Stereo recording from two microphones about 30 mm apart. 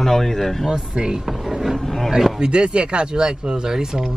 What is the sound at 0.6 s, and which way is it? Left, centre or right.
Speech, right.